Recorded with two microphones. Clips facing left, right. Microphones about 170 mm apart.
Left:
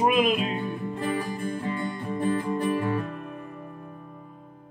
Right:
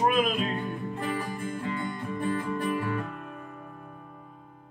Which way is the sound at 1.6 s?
30° left (ahead or behind).